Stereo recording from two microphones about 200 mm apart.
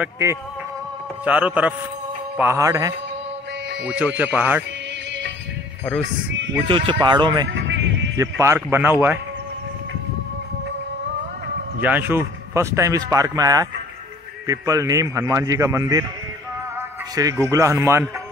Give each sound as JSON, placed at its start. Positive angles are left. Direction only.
{"t": 0.0, "sound": "speech", "side_deg": -15}
{"t": 6.9, "sound": "speech", "side_deg": -20}
{"t": 7.5, "sound": "music", "side_deg": -65}
{"t": 8.2, "sound": "speech", "side_deg": -15}
{"t": 11.8, "sound": "speech", "side_deg": -10}
{"t": 17.1, "sound": "speech", "side_deg": -15}